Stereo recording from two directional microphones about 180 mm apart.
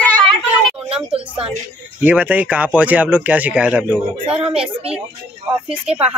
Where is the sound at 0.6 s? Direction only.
5° right (ahead or behind).